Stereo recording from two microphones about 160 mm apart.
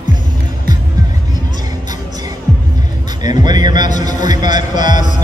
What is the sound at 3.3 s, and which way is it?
Speech, 25° right (ahead or behind).